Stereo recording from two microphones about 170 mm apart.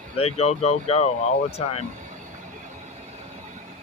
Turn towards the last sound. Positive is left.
turn(degrees=40)  # may be behind; listen again after turning